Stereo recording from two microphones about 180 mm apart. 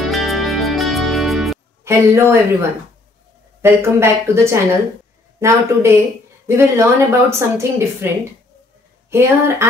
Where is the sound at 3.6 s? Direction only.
15° right (ahead or behind).